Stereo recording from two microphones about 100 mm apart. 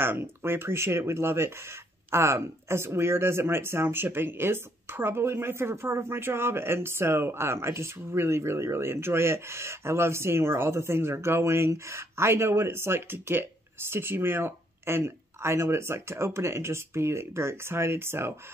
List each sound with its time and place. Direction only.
0.0 s speech: 25° right (ahead or behind)